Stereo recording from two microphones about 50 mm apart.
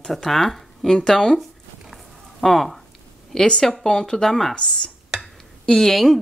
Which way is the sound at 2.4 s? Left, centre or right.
Centre.